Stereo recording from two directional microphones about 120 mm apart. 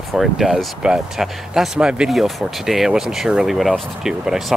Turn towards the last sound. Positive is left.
turn(degrees=-5)  # may be behind; listen again after turning